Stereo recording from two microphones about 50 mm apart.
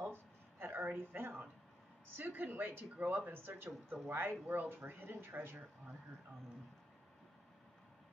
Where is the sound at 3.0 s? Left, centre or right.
Right.